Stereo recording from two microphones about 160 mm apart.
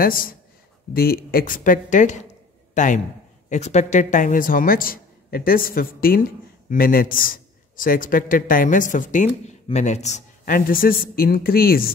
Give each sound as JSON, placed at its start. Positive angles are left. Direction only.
{"t": 0.0, "sound": "a man's voice", "side_deg": 65}